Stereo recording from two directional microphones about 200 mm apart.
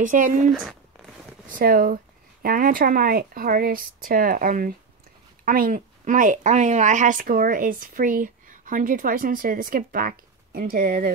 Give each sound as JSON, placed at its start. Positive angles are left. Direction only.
{"t": 0.0, "sound": "speech", "side_deg": -40}
{"t": 1.5, "sound": "a woman's voice", "side_deg": -45}